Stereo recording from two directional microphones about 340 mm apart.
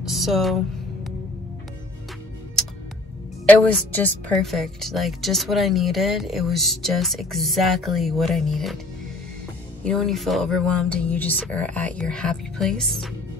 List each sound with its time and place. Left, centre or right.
0.1 s a woman's voice: centre
3.4 s a woman's voice: centre
9.8 s a woman's voice: centre